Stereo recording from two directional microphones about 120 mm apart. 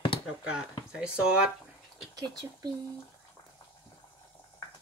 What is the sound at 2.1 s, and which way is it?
Speech, 35° right (ahead or behind).